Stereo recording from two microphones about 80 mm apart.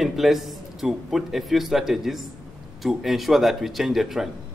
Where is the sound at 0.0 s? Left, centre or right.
Centre.